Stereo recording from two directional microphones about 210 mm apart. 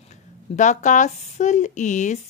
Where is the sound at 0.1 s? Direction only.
35° left (ahead or behind).